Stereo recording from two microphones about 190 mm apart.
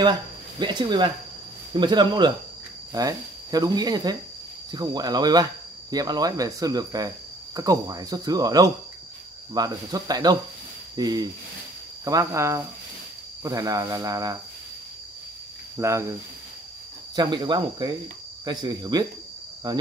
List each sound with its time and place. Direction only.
0.0 s speech: 20° right (ahead or behind)
15.8 s speech: 15° right (ahead or behind)